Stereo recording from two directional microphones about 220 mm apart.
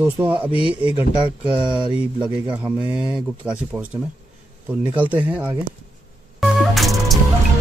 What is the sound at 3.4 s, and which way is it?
Speech, 5° right (ahead or behind).